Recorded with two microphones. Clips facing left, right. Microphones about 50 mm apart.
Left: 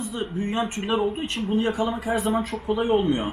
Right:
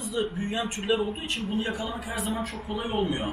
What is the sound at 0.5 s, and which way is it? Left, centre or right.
A man's voice, left.